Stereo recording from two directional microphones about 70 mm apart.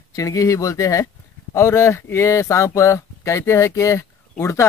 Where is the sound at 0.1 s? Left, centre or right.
Left.